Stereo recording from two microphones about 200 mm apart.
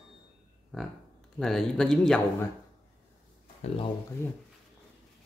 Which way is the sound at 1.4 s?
5° left (ahead or behind).